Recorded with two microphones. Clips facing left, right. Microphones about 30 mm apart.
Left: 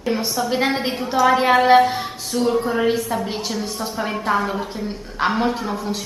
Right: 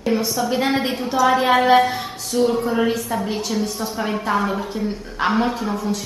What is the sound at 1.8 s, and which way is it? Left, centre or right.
A woman's voice, centre.